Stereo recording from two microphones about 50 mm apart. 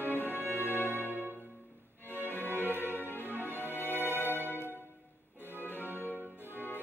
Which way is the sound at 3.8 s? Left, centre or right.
Left.